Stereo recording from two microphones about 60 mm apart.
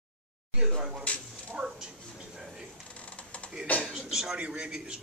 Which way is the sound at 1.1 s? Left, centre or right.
Left.